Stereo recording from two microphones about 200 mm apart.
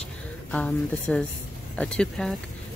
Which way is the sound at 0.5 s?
5° left (ahead or behind).